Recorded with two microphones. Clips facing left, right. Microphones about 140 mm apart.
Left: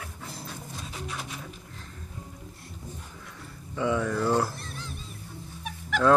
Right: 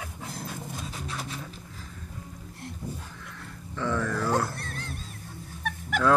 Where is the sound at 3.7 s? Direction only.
10° left (ahead or behind).